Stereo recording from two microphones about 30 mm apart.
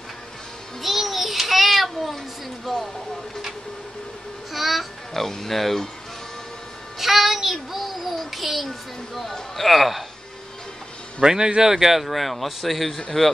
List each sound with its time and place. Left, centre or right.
0.8 s a sound: centre
4.5 s music: centre
5.1 s speech: centre
7.0 s music: centre
7.5 s a child's voice: centre
11.1 s speech: right
12.1 s speech: centre